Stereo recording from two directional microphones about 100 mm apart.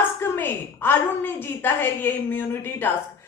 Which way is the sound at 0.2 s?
25° left (ahead or behind).